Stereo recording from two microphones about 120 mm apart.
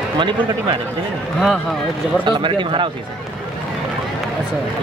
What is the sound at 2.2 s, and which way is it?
Speech, 40° right (ahead or behind).